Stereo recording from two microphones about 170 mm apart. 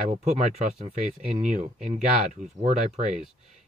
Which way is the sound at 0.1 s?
40° right (ahead or behind).